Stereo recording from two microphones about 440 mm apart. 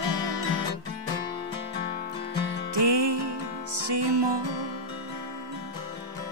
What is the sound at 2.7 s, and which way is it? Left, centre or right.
Music, right.